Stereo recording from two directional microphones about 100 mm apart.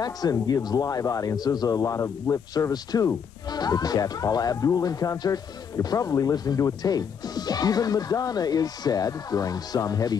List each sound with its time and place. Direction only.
0.0 s speech: 40° left (ahead or behind)